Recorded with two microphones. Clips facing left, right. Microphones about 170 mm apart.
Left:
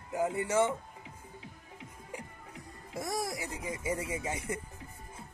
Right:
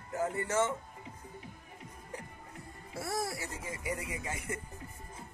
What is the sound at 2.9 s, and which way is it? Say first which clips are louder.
Speech: left 1 dB; 15° left (ahead or behind).